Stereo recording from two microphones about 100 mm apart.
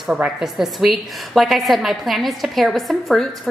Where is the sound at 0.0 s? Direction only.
5° right (ahead or behind).